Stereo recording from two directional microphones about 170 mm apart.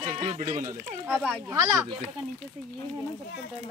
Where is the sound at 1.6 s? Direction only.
20° right (ahead or behind).